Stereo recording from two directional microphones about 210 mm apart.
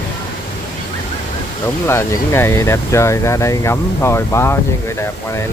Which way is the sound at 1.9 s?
10° left (ahead or behind).